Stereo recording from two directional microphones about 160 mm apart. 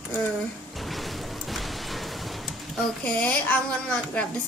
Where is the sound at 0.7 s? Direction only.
Centre (ahead or behind).